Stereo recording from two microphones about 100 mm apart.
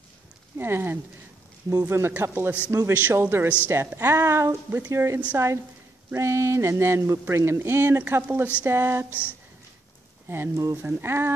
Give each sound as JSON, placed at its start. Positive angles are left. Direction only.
{"t": 0.6, "sound": "speech", "side_deg": -25}
{"t": 10.2, "sound": "speech", "side_deg": -25}